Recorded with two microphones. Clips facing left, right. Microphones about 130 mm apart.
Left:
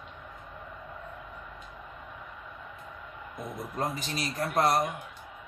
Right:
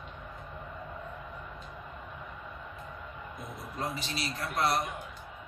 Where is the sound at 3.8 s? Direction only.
45° left (ahead or behind).